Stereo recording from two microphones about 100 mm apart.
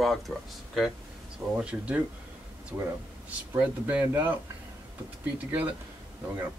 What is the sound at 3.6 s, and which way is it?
Speech, 15° right (ahead or behind).